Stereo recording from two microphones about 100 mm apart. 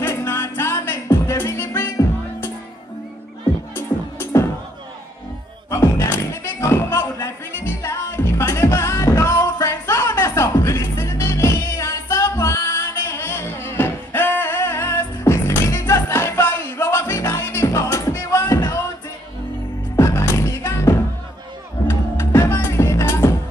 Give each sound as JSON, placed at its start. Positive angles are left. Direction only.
{"t": 0.0, "sound": "music", "side_deg": 25}
{"t": 3.7, "sound": "music", "side_deg": 25}
{"t": 5.7, "sound": "music", "side_deg": 30}
{"t": 20.0, "sound": "music", "side_deg": 30}